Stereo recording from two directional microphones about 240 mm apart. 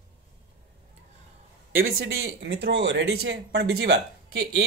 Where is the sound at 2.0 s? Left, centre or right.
Right.